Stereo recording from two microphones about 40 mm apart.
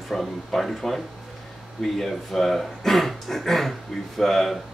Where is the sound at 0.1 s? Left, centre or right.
Centre.